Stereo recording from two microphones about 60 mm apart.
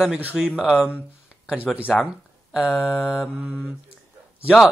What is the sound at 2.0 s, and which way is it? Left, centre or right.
Speech, centre.